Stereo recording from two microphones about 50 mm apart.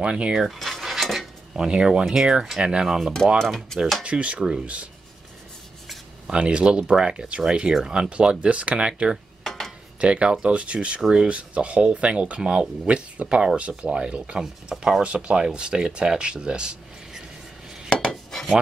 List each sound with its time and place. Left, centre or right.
0.0 s speech: centre
0.5 s cutlery: centre
3.3 s speech: centre
4.0 s speech: right
6.2 s speech: right
9.4 s a sound: centre
9.9 s speech: right
17.8 s dishes: centre